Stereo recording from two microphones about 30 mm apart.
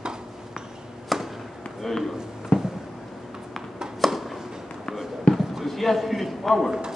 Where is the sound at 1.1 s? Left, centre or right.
Centre.